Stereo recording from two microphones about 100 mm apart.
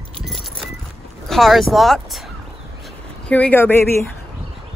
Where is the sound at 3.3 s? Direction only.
15° left (ahead or behind).